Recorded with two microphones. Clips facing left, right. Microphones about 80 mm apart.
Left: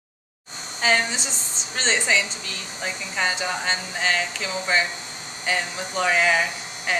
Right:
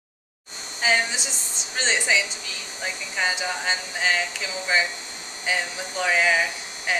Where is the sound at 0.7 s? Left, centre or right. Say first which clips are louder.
Left 1 dB; centre.